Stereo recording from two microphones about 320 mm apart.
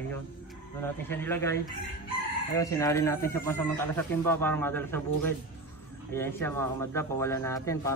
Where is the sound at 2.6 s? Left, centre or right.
Centre.